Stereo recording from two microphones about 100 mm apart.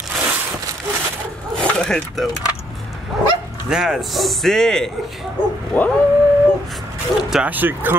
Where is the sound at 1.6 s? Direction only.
5° left (ahead or behind).